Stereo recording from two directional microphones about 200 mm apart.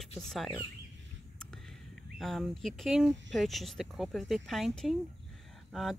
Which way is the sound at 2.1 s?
Centre (ahead or behind).